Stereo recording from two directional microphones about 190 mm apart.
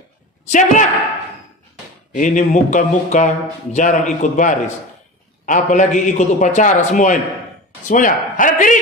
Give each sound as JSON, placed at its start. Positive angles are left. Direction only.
{"t": 0.5, "sound": "a man's voice", "side_deg": 40}
{"t": 2.1, "sound": "a man's voice", "side_deg": 40}